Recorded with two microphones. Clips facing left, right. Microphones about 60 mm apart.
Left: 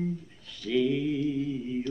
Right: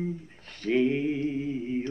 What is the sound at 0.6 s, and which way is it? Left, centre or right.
Mantra, right.